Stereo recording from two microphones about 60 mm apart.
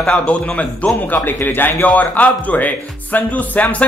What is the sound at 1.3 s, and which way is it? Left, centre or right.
A man's voice, left.